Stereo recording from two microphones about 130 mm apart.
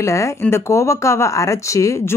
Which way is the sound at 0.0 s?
25° left (ahead or behind).